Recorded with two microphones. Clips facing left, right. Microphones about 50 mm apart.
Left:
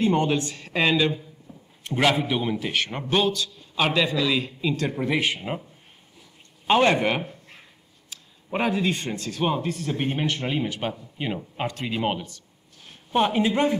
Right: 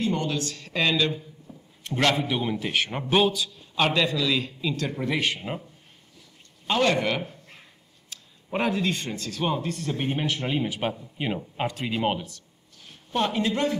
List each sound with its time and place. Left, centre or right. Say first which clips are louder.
0.0 s speech: left 5 dB; left; by 3.8 s centre
3.8 s speech: left 1 dB; centre
6.7 s speech: left 3 dB; left
8.1 s speech: left 1 dB; centre
12.8 s speech: left 4 dB; centre